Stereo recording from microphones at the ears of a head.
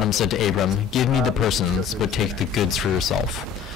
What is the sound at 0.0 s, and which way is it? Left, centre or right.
Speech, left.